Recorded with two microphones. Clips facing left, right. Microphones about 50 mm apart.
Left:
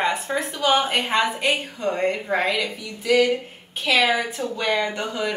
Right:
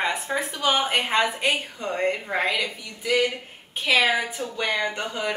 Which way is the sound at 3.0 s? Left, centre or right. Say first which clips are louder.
Left 4 dB; right.